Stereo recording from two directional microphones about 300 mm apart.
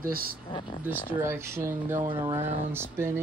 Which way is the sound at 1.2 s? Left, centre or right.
Centre.